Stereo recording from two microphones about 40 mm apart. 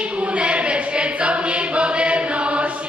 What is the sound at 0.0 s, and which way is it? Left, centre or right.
Choir, right.